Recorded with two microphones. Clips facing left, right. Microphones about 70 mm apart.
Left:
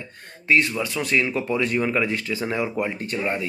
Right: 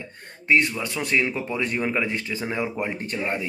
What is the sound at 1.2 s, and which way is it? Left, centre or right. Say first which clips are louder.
Speech: left 3 dB; centre.